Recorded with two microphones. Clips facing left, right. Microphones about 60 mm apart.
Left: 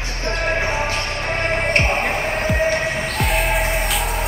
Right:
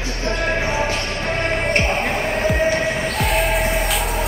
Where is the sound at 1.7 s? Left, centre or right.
Left.